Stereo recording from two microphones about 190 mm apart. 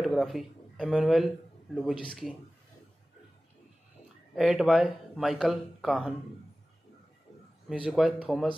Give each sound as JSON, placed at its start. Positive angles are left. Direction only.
{"t": 0.0, "sound": "speech", "side_deg": 0}
{"t": 4.4, "sound": "speech", "side_deg": 0}
{"t": 7.7, "sound": "speech", "side_deg": -5}